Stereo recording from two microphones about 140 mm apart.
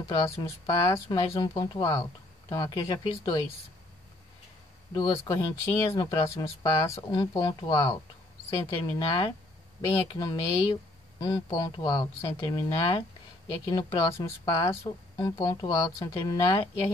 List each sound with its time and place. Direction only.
0.4 s speech: 25° left (ahead or behind)
4.9 s speech: 30° left (ahead or behind)
13.9 s speech: 25° left (ahead or behind)